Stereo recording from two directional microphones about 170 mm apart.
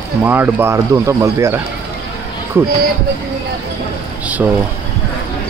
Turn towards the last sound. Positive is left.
turn(degrees=-10)  # may be behind; listen again after turning